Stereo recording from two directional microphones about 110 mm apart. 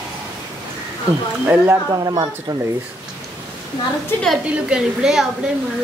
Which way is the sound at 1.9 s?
30° right (ahead or behind).